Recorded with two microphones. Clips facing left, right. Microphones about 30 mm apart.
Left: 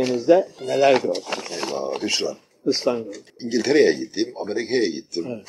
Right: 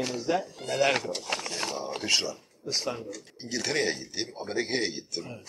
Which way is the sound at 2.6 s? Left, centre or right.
Left.